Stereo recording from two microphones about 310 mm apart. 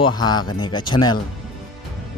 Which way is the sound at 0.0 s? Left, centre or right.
Centre.